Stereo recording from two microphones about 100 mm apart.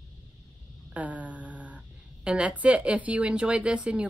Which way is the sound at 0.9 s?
15° right (ahead or behind).